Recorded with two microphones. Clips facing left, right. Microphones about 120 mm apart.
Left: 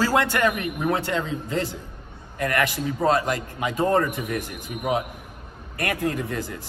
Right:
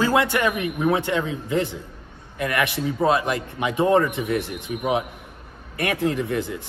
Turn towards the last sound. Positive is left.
turn(degrees=-20)  # may be behind; listen again after turning